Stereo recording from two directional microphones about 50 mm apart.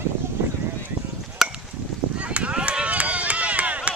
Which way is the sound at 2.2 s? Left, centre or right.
Right.